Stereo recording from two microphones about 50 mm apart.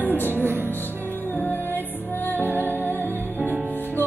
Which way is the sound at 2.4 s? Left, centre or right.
Left.